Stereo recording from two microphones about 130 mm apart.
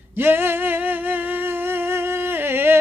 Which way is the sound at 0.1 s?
15° right (ahead or behind).